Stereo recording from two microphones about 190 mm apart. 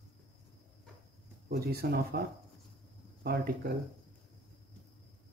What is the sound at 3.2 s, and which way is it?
Speech, 55° right (ahead or behind).